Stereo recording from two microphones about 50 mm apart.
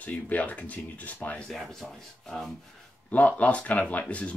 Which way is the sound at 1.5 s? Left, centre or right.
Centre.